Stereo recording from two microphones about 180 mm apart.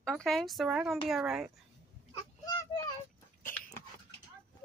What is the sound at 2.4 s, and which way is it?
Children playing, 20° left (ahead or behind).